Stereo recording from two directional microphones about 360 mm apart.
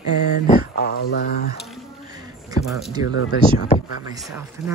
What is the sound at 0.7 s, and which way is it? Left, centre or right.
Speech, left.